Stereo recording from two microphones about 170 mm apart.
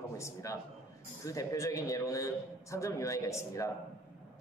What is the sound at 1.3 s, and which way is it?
A man's voice, 20° left (ahead or behind).